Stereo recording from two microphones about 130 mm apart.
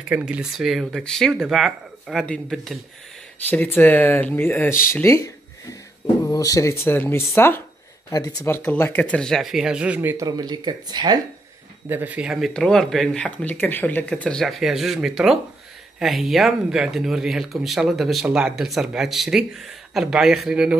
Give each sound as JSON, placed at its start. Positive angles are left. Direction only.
{"t": 0.1, "sound": "speech", "side_deg": -10}
{"t": 3.5, "sound": "speech", "side_deg": 15}
{"t": 5.0, "sound": "a sound", "side_deg": 25}
{"t": 6.2, "sound": "speech", "side_deg": 25}
{"t": 8.6, "sound": "speech", "side_deg": 15}
{"t": 10.1, "sound": "speech", "side_deg": -30}
{"t": 11.9, "sound": "speech", "side_deg": -10}